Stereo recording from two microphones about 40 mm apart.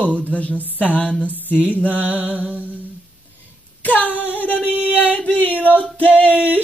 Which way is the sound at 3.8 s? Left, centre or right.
Left.